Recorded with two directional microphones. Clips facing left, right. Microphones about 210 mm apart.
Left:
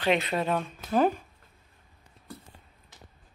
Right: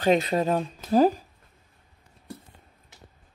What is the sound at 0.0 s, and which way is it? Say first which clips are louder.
Speech: right 4 dB; 40° right (ahead or behind).